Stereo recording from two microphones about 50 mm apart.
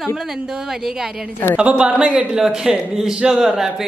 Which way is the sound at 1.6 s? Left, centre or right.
Right.